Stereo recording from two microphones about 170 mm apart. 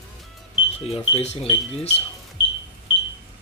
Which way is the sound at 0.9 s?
35° left (ahead or behind).